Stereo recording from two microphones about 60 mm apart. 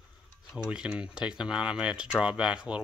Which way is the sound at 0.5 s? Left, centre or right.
Centre.